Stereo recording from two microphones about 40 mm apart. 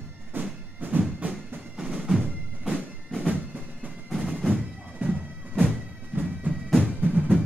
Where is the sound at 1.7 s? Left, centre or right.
Centre.